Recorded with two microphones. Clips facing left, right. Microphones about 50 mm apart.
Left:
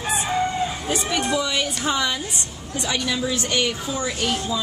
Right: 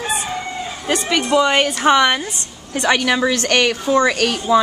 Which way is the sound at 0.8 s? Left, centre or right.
Right.